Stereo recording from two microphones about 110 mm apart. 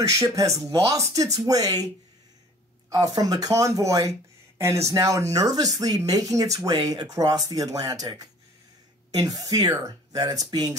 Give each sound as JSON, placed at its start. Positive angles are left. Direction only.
{"t": 0.1, "sound": "speech", "side_deg": -30}
{"t": 2.9, "sound": "speech", "side_deg": -35}